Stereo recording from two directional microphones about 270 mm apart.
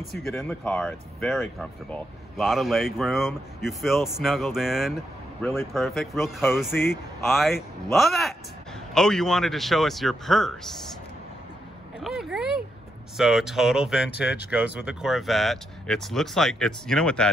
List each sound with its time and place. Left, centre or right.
0.2 s speech: centre
12.0 s a sound: centre
13.2 s speech: centre